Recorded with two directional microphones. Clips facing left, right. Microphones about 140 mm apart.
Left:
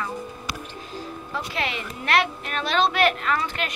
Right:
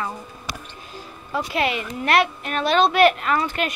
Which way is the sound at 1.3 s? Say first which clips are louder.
Right 7 dB; 10° right (ahead or behind).